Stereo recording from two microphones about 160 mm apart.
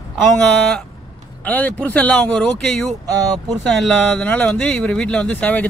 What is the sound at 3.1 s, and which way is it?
Speech, 25° right (ahead or behind).